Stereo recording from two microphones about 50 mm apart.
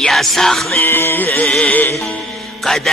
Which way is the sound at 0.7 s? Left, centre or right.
Left.